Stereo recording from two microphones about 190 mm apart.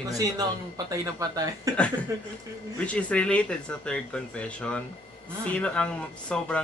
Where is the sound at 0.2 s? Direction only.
20° right (ahead or behind).